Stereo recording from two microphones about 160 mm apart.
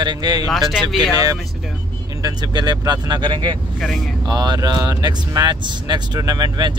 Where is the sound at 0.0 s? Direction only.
25° right (ahead or behind).